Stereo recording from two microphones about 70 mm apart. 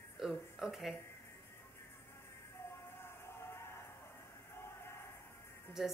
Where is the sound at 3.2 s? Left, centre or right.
Left.